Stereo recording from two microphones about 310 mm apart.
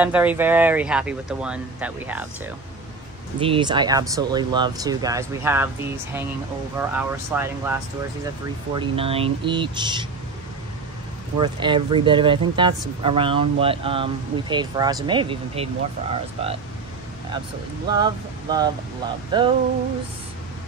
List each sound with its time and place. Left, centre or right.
0.0 s speech: centre
3.3 s speech: centre
6.8 s speech: centre
8.7 s speech: centre
11.3 s speech: centre
17.9 s speech: centre